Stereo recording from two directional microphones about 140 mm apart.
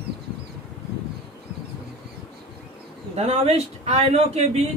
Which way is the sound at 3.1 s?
50° right (ahead or behind).